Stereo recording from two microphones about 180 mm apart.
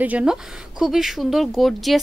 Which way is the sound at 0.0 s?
5° right (ahead or behind).